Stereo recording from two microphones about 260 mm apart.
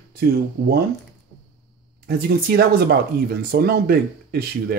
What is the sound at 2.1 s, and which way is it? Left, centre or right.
Speech, right.